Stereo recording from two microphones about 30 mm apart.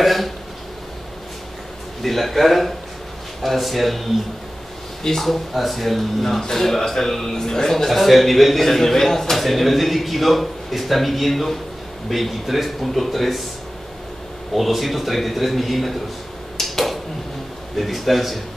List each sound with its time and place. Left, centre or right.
0.0 s speech: centre
2.0 s a man's voice: centre
5.0 s a man's voice: centre
7.7 s a man's voice: centre
14.5 s a man's voice: centre
16.6 s tick-tock: centre
17.7 s a man's voice: centre